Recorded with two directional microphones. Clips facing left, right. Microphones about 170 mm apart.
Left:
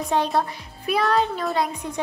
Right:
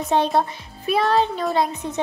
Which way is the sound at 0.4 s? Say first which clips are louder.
Right 2 dB; 25° right (ahead or behind).